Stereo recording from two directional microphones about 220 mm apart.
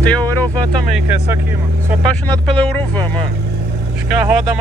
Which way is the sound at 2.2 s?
5° left (ahead or behind).